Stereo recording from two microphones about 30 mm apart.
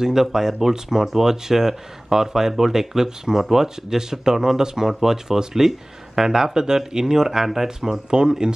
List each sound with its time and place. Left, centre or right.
0.0 s speech: centre